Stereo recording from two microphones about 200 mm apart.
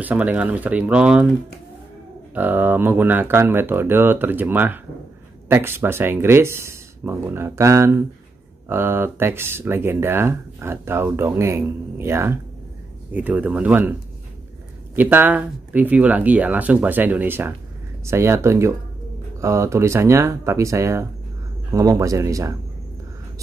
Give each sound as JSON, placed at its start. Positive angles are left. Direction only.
{"t": 0.0, "sound": "speech", "side_deg": -5}
{"t": 2.3, "sound": "speech", "side_deg": -10}
{"t": 15.0, "sound": "speech", "side_deg": -10}